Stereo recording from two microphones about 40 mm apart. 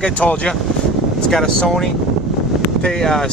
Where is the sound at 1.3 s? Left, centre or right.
Centre.